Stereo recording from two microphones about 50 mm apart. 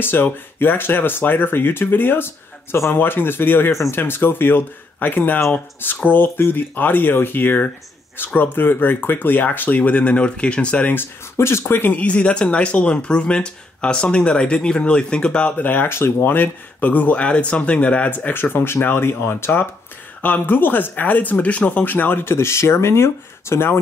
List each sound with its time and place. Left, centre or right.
0.0 s speech: left
9.8 s speech: left
11.3 s speech: left
11.6 s speech: left
12.0 s speech: left
15.5 s speech: left
18.1 s speech: left
20.2 s speech: left